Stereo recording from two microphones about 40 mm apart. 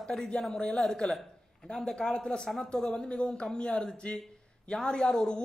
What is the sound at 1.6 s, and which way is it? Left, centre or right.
A man's voice, left.